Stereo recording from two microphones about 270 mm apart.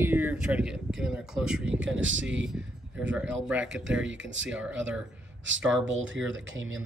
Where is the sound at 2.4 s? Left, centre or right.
Centre.